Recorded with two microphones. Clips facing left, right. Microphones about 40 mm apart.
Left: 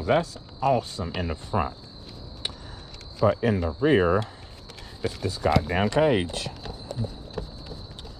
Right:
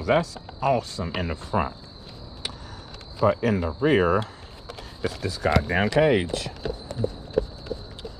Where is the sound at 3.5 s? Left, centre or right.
Centre.